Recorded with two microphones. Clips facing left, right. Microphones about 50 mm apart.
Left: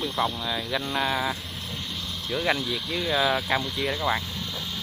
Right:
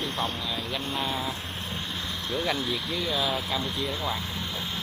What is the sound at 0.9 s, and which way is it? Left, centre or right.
Speech, left.